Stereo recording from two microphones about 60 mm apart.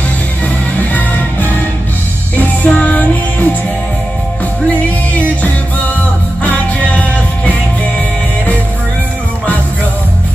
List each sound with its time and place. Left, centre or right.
2.3 s music: left
6.4 s music: left